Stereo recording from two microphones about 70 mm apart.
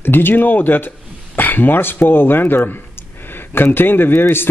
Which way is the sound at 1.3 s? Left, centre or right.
Left.